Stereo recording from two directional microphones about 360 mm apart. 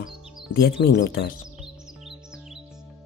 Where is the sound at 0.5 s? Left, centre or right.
Left.